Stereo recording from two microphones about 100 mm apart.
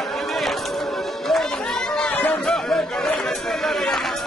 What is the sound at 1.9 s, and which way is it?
Chatter, 10° left (ahead or behind).